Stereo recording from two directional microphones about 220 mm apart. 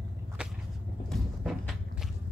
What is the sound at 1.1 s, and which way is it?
Walk, centre (ahead or behind).